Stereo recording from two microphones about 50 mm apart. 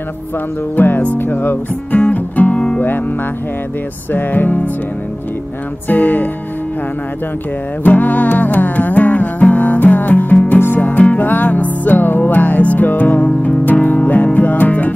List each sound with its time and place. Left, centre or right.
0.7 s music: left
1.0 s speech: left
2.0 s music: left
4.1 s speech: left
5.9 s speech: left
7.8 s music: left